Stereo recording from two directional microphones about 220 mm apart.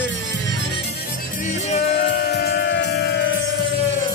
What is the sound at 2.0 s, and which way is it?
Music, 45° left (ahead or behind).